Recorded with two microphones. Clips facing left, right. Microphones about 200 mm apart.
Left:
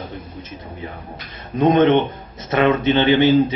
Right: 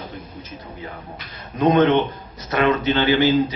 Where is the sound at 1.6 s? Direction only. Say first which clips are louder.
Left 2 dB; 15° left (ahead or behind).